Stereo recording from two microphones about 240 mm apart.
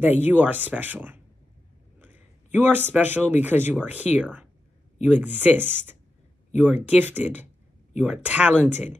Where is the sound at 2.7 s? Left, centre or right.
Centre.